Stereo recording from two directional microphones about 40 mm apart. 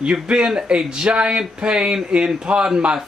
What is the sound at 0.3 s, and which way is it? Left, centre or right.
Speech, right.